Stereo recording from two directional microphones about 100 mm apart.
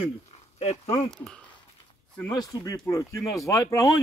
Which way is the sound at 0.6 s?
90° left.